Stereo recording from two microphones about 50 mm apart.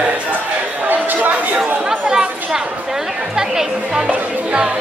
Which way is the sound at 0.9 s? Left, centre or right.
Right.